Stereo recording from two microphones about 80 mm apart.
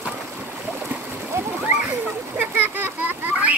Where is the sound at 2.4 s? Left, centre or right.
Right.